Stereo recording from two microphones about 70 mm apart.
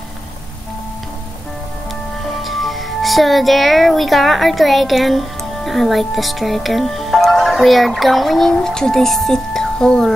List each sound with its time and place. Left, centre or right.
2.4 s speech: centre